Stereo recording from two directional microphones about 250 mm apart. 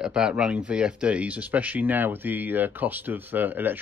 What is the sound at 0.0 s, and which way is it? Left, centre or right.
Speech, centre.